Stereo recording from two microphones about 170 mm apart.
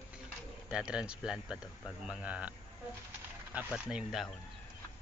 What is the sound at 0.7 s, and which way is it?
Speech, 5° right (ahead or behind).